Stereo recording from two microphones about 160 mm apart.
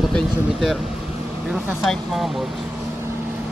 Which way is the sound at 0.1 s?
Centre (ahead or behind).